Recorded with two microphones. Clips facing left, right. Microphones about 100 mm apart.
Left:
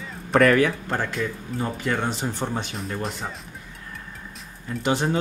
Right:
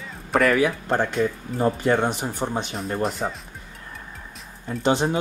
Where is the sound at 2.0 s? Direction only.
15° right (ahead or behind).